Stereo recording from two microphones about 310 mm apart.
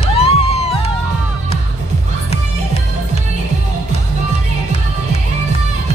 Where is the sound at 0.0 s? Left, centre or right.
Centre.